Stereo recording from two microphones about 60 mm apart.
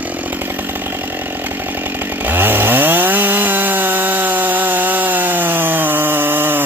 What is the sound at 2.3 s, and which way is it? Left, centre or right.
Chainsaw, right.